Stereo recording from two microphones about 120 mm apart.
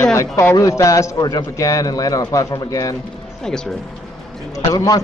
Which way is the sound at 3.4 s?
5° left (ahead or behind).